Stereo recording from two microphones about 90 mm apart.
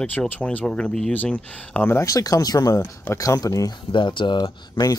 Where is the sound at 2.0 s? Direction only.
40° left (ahead or behind).